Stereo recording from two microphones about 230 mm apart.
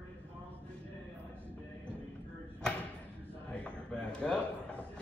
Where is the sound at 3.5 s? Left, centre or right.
Centre.